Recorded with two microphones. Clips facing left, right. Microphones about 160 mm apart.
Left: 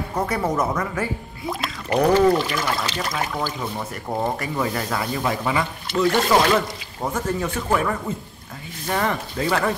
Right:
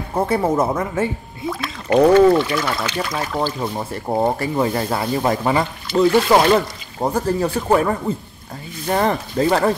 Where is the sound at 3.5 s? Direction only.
30° right (ahead or behind).